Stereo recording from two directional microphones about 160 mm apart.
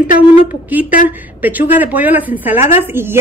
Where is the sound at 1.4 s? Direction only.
10° right (ahead or behind).